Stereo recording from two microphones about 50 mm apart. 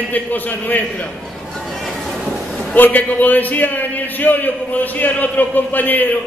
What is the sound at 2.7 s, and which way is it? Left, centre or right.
A man's voice, left.